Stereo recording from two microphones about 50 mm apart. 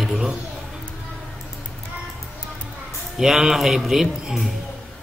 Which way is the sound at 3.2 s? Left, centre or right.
Centre.